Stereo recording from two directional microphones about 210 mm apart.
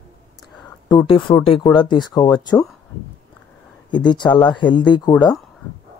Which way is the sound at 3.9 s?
20° left (ahead or behind).